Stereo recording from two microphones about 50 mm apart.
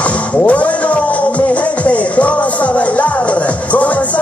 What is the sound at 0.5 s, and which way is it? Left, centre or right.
Music, left.